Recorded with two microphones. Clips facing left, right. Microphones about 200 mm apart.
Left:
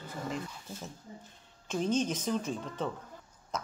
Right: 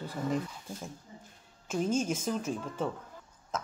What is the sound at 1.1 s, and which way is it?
Speech, 35° left (ahead or behind).